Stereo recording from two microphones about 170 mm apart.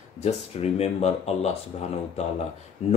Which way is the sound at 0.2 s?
40° left (ahead or behind).